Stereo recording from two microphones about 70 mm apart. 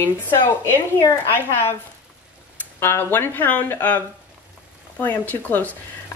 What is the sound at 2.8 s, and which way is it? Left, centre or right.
Speech, left.